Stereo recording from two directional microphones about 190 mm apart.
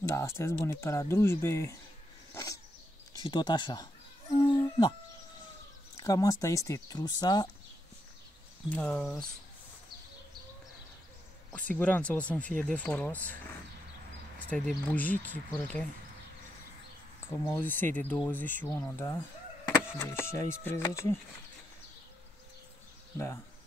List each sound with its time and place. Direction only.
0.0 s speech: 15° left (ahead or behind)
3.3 s speech: 20° left (ahead or behind)
4.4 s a sound: 25° left (ahead or behind)
5.9 s speech: 20° left (ahead or behind)
8.6 s speech: 5° left (ahead or behind)
11.5 s speech: 5° left (ahead or behind)
14.5 s speech: 5° left (ahead or behind)
17.5 s speech: 10° left (ahead or behind)
23.1 s speech: 15° left (ahead or behind)